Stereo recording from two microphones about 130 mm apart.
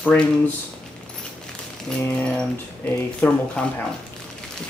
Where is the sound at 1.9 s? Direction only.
5° left (ahead or behind).